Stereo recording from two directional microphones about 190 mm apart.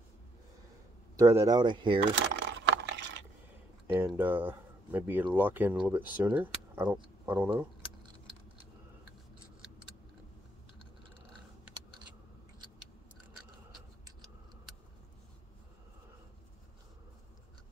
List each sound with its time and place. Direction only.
1.1 s speech: 20° right (ahead or behind)
2.4 s a sound: 65° right (ahead or behind)
3.8 s speech: 10° right (ahead or behind)